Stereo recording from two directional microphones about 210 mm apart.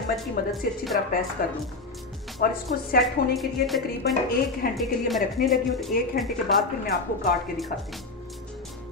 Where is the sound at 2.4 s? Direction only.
45° left (ahead or behind).